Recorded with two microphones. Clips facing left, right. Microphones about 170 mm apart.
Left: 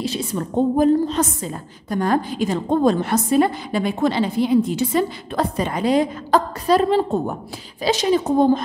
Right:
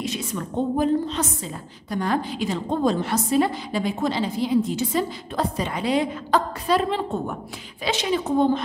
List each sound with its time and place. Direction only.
0.0 s a woman's voice: 35° left (ahead or behind)